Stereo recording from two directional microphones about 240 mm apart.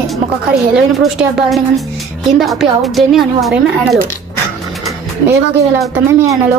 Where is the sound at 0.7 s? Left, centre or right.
Centre.